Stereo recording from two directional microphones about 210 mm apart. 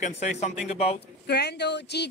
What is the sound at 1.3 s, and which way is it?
Speech, 55° left (ahead or behind).